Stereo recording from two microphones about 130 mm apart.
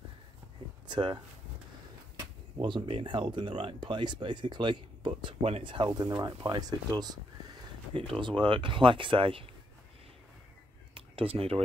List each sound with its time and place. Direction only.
0.8 s speech: 35° right (ahead or behind)
11.0 s speech: 45° right (ahead or behind)